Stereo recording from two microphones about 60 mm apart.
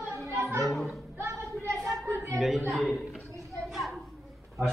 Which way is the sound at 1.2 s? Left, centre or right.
Right.